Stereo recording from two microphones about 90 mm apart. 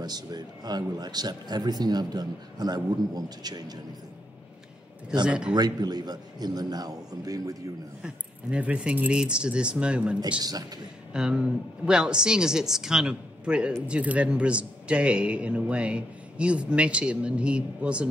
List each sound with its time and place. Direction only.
0.0 s speech: 50° right (ahead or behind)
5.2 s a man's voice: 10° right (ahead or behind)
5.5 s speech: 50° right (ahead or behind)
8.0 s a man's voice: 15° right (ahead or behind)
11.1 s a man's voice: 10° right (ahead or behind)